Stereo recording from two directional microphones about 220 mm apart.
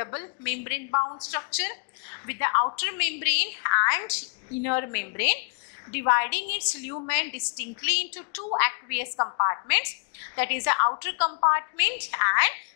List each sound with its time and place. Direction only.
0.0 s a woman's voice: 15° left (ahead or behind)
9.1 s a woman's voice: 20° left (ahead or behind)